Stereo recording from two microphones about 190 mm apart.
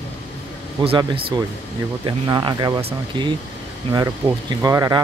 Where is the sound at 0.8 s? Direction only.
30° right (ahead or behind).